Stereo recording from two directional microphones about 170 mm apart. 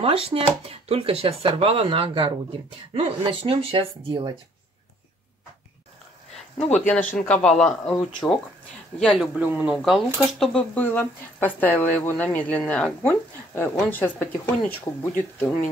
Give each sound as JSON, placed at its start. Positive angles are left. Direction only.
{"t": 0.0, "sound": "speech", "side_deg": -35}
{"t": 7.2, "sound": "speech", "side_deg": 5}
{"t": 9.0, "sound": "speech", "side_deg": 0}